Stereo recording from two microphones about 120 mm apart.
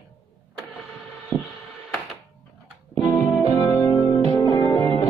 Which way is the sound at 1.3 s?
10° left (ahead or behind).